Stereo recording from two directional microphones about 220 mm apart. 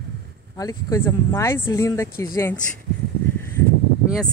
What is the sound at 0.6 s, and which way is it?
Speech, 15° left (ahead or behind).